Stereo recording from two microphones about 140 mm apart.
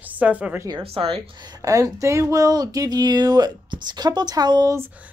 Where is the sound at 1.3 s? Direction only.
30° right (ahead or behind).